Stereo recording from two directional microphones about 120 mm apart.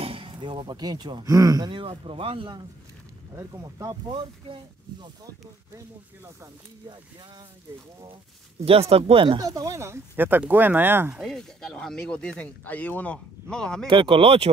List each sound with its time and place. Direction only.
0.0 s speech: 50° right (ahead or behind)
3.3 s speech: 25° right (ahead or behind)
8.6 s speech: 55° right (ahead or behind)
9.4 s speech: 30° right (ahead or behind)
11.1 s speech: 5° left (ahead or behind)
13.8 s speech: 45° right (ahead or behind)